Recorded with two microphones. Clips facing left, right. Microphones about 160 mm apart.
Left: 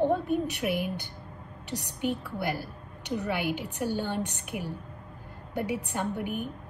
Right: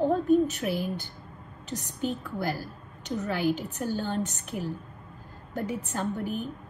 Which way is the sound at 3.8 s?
15° left (ahead or behind).